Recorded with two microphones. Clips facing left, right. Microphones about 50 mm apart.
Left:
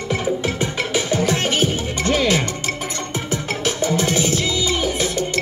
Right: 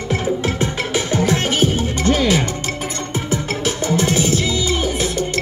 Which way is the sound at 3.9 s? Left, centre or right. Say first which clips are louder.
Right 3 dB; right.